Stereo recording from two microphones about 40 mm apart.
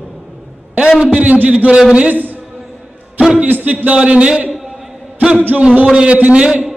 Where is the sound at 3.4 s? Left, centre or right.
Right.